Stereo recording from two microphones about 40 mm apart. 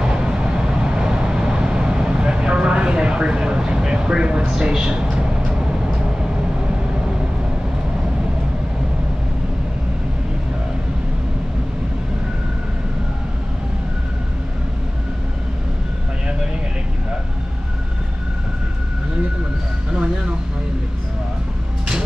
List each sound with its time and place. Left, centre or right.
0.0 s vehicle: right